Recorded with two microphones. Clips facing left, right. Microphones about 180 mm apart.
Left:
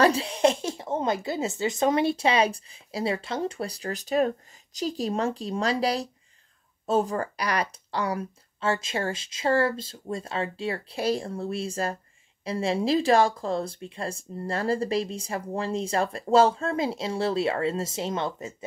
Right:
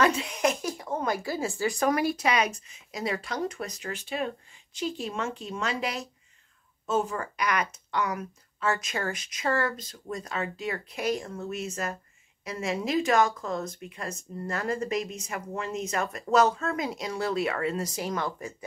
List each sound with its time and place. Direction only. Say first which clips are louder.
0.0 s speech: left 4 dB; 30° left (ahead or behind)